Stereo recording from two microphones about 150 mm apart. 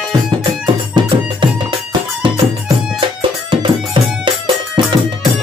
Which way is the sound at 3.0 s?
35° right (ahead or behind).